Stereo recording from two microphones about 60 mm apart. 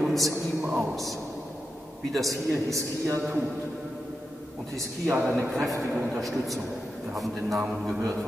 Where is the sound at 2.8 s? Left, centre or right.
Right.